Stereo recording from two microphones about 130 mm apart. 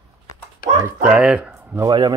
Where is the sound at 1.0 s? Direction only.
5° right (ahead or behind).